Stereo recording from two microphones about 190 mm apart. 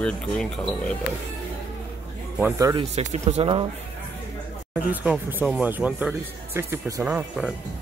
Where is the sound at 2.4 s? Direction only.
20° right (ahead or behind).